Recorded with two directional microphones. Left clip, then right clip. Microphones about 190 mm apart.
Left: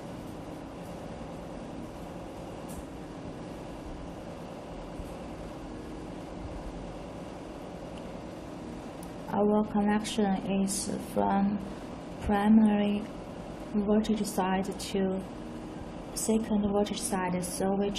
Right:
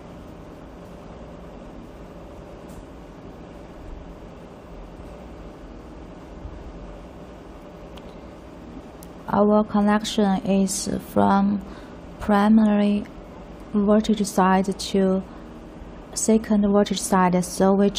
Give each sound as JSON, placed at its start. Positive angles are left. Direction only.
{"t": 9.3, "sound": "a woman's voice", "side_deg": -10}
{"t": 16.3, "sound": "a woman's voice", "side_deg": -15}